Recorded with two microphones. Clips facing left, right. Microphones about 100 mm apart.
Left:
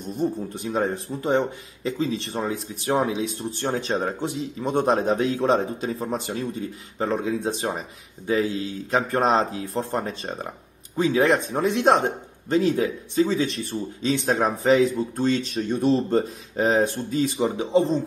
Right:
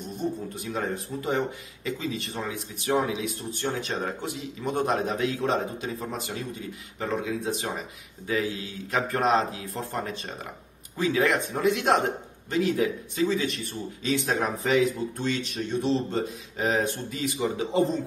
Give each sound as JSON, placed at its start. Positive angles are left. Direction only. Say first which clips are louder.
{"t": 0.2, "sound": "speech", "louder": "left 5 dB", "side_deg": 35}
{"t": 15.8, "sound": "speech", "louder": "left 6 dB", "side_deg": 45}